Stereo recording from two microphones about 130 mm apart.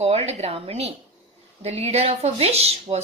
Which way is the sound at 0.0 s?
55° right (ahead or behind).